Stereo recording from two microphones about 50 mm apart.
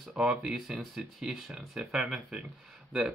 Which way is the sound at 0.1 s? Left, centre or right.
Centre.